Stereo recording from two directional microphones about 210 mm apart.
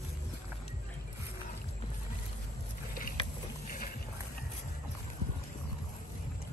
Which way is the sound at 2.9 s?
45° left (ahead or behind).